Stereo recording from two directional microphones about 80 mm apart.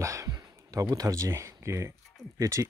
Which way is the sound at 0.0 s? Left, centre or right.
Right.